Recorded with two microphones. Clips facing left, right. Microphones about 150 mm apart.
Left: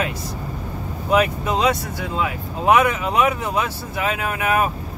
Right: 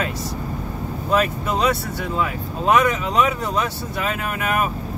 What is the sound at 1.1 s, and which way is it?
Speech, 15° left (ahead or behind).